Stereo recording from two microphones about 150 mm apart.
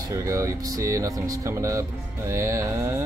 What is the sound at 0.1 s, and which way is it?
Speech, 20° right (ahead or behind).